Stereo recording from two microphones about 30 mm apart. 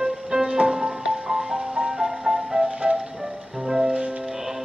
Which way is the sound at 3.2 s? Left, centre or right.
Centre.